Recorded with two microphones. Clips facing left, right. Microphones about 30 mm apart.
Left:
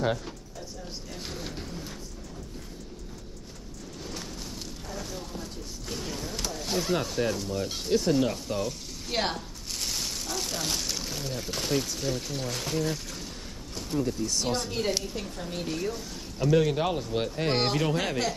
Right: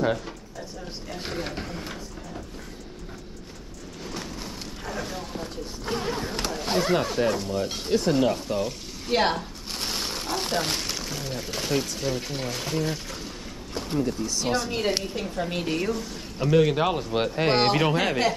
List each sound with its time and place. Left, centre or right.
1.1 s speech: right
4.8 s a sound: right
7.3 s speech: right
8.0 s a sound: right
11.0 s pour: centre
11.2 s speech: right
12.0 s speech: right
13.7 s a sound: right
14.7 s speech: right
15.3 s a woman's voice: right
16.3 s speech: right